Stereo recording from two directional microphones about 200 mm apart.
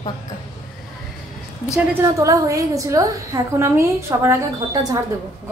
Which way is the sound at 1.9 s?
15° right (ahead or behind).